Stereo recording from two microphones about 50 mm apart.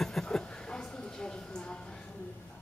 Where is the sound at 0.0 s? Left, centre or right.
Centre.